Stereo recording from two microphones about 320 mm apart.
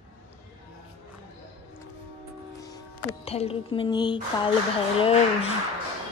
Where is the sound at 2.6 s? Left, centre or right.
Centre.